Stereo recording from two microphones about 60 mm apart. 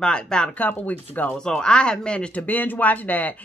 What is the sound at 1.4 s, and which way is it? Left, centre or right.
Speech, centre.